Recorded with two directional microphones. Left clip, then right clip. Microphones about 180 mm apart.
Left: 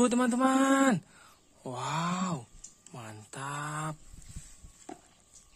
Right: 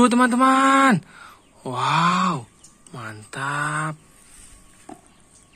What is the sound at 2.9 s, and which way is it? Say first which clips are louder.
Speech: right 12 dB; 15° left (ahead or behind).